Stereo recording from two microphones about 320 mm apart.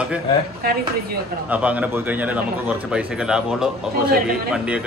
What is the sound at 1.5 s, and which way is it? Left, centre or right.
Speech, centre.